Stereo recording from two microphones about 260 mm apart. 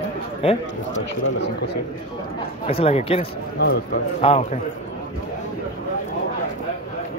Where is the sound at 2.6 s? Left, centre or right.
Left.